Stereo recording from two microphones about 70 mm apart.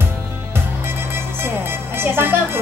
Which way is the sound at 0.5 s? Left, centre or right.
Right.